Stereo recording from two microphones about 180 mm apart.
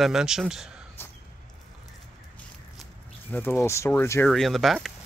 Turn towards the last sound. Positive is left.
turn(degrees=0)  # may be behind; listen again after turning